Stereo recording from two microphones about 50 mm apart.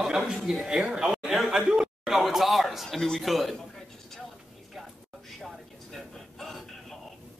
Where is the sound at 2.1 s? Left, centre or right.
Centre.